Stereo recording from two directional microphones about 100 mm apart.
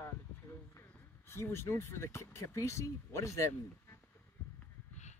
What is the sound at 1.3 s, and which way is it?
Speech, 25° left (ahead or behind).